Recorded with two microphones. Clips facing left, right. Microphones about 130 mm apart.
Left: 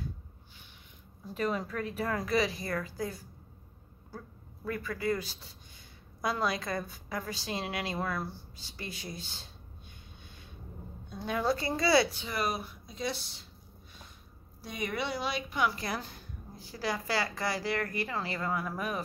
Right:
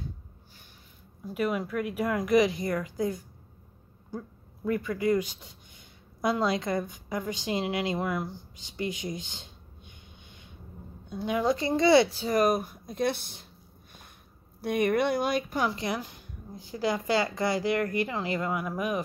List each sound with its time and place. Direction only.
1.2 s a woman's voice: 10° right (ahead or behind)
4.6 s a woman's voice: 20° right (ahead or behind)
6.2 s a woman's voice: 25° right (ahead or behind); by 13.5 s 55° right (ahead or behind)
14.6 s speech: 55° right (ahead or behind)
15.7 s a woman's voice: 20° right (ahead or behind)